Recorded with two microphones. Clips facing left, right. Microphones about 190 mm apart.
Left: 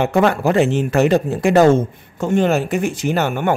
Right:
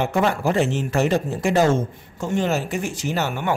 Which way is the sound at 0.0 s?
65° left (ahead or behind).